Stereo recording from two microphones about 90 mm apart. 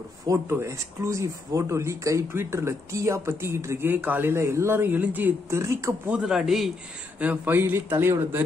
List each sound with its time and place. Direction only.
0.3 s speech: 30° right (ahead or behind)
5.5 s speech: 35° right (ahead or behind)
6.2 s a man's voice: 5° right (ahead or behind)
7.2 s speech: 20° right (ahead or behind)